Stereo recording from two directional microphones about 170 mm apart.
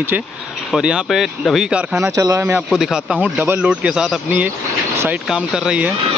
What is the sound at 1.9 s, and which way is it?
Speech, 15° right (ahead or behind).